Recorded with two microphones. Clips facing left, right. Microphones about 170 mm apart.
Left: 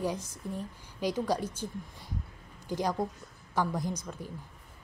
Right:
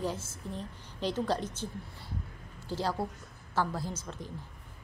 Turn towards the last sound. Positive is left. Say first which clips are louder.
# left 3 dB
turn(degrees=15)  # may be behind; listen again after turning